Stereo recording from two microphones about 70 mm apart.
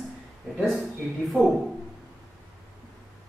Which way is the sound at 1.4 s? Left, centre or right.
Centre.